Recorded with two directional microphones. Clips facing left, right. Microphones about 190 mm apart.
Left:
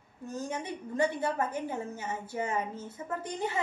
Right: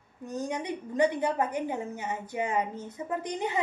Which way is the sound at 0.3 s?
15° right (ahead or behind).